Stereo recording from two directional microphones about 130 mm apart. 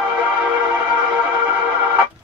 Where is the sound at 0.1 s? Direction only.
10° right (ahead or behind).